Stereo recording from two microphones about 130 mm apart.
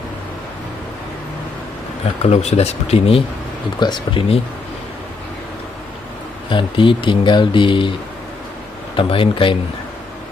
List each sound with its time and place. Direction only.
2.2 s speech: 55° left (ahead or behind)
3.8 s speech: 35° left (ahead or behind)
6.5 s speech: 40° left (ahead or behind)
8.9 s speech: 40° left (ahead or behind)